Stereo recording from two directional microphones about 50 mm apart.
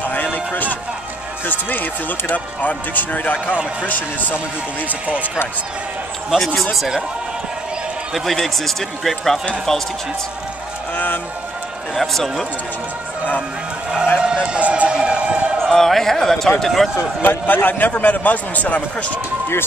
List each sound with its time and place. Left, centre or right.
0.0 s a sound: left
1.5 s speech: left
4.8 s speech: right
6.3 s a man's voice: centre
8.1 s a man's voice: centre
11.9 s a man's voice: centre
14.2 s a sound: centre
15.6 s speech: centre
17.2 s speech: left